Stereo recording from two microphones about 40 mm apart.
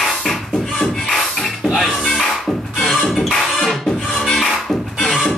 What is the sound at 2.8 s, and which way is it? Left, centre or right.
Music, centre.